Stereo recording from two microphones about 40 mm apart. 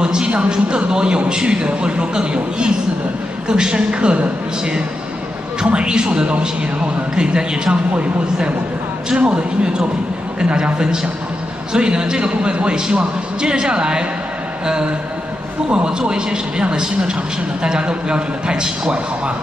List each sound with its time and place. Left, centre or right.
0.0 s a sound: centre
0.4 s a man's voice: right
5.6 s a man's voice: right
7.9 s a woman's voice: right
15.7 s a man's voice: right
17.6 s a man's voice: right